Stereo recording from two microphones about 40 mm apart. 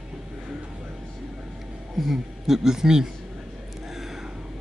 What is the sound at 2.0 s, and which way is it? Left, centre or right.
A man's voice, centre.